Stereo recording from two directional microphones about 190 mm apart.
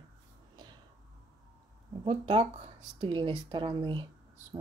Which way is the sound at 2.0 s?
25° right (ahead or behind).